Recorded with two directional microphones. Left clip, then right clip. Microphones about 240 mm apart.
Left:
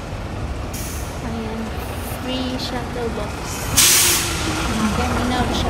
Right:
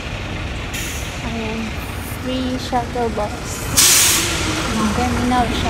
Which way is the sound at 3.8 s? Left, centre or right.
Centre.